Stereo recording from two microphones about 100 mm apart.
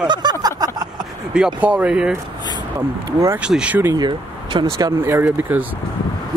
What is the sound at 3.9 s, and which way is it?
Speech, 45° right (ahead or behind).